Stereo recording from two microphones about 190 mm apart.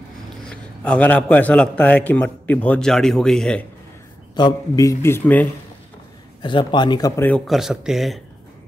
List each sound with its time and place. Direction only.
0.5 s a man's voice: 5° left (ahead or behind)
4.4 s a man's voice: 20° left (ahead or behind)
6.4 s a man's voice: 25° left (ahead or behind); by 8.2 s centre (ahead or behind)